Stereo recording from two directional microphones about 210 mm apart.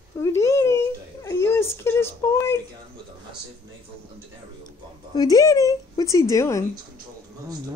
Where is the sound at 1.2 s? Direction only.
15° left (ahead or behind).